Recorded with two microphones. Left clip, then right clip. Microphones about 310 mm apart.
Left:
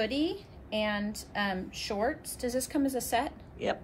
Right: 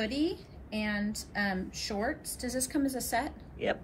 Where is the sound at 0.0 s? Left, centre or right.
Left.